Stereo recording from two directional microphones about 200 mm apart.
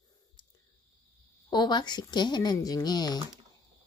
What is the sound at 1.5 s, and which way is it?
Speech, 20° left (ahead or behind).